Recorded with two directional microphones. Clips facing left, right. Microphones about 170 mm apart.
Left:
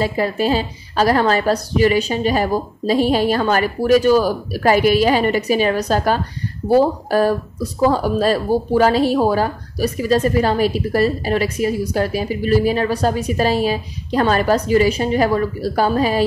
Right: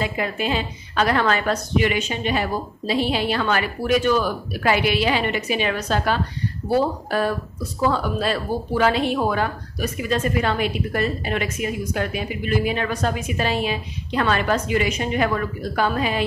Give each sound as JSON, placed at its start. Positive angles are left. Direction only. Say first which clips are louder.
{"t": 0.0, "sound": "speech", "louder": "left 6 dB", "side_deg": 35}